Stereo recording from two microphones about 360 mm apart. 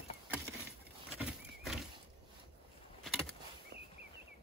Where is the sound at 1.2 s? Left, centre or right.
Centre.